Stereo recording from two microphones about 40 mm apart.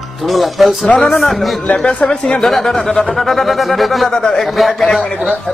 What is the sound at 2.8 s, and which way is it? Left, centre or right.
Speech, centre.